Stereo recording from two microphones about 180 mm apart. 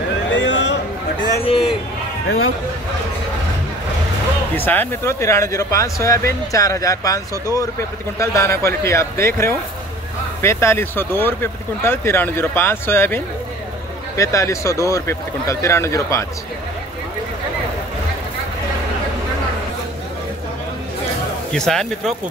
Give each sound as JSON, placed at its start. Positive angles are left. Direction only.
{"t": 0.3, "sound": "a sound", "side_deg": 90}
{"t": 1.4, "sound": "a man's voice", "side_deg": 30}
{"t": 4.6, "sound": "speech", "side_deg": 10}
{"t": 21.5, "sound": "speech", "side_deg": 5}